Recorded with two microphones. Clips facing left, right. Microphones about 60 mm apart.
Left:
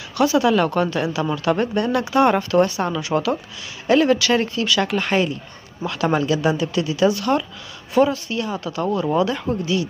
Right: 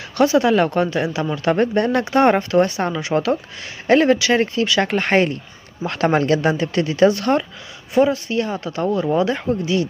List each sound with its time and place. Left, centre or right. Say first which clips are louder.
0.2 s speech: right 2 dB; right
7.9 s speech: right 1 dB; right